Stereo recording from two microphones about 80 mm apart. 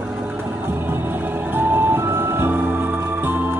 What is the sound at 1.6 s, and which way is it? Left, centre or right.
Vehicle, right.